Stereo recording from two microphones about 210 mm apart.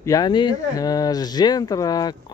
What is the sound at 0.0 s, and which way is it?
Speech, 15° left (ahead or behind).